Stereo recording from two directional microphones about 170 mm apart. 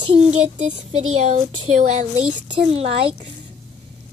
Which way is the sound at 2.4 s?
35° right (ahead or behind).